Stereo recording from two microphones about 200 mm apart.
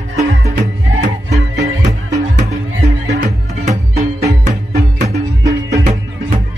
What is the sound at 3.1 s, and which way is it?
Music, 35° right (ahead or behind).